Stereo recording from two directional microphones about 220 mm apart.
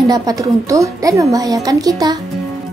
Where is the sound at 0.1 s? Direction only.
15° right (ahead or behind).